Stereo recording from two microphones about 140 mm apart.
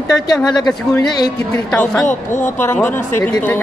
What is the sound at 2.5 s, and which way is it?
Speech, 15° left (ahead or behind).